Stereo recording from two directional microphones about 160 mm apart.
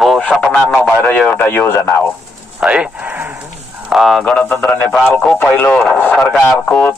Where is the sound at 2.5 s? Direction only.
5° right (ahead or behind); by 6.9 s 10° left (ahead or behind).